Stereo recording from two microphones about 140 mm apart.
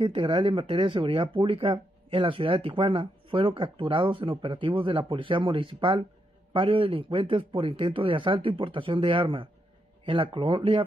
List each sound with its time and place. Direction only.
0.0 s speech: 35° right (ahead or behind)